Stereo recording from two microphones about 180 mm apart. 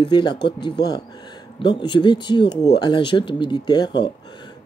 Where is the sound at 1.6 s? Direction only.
25° left (ahead or behind).